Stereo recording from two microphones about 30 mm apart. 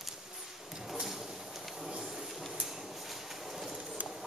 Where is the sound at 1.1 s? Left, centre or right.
Centre.